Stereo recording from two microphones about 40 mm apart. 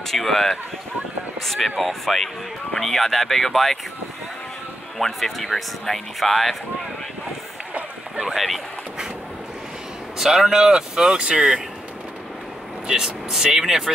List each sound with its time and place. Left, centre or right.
0.1 s speech: centre
4.9 s speech: centre
8.2 s speech: centre
10.1 s speech: centre
12.8 s speech: centre